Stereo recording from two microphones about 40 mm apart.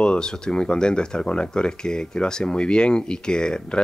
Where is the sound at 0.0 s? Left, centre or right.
Left.